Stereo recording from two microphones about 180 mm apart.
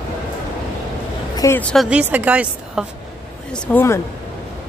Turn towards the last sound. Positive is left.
turn(degrees=10)  # may be behind; listen again after turning